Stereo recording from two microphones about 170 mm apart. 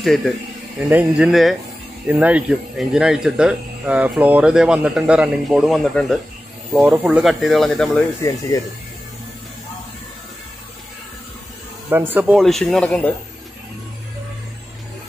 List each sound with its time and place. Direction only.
0.0 s speech: 5° left (ahead or behind)
0.8 s speech: 5° right (ahead or behind)
8.2 s speech: 20° left (ahead or behind)
12.1 s speech: 5° right (ahead or behind)